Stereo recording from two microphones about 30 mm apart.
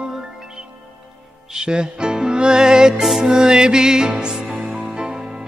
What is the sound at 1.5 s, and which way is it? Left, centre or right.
Music, right.